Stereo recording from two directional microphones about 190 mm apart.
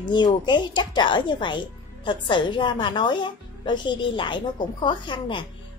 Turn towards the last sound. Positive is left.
turn(degrees=25)  # may be behind; listen again after turning